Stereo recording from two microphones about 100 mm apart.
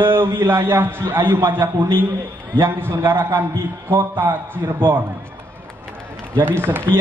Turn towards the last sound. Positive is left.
turn(degrees=-20)  # may be behind; listen again after turning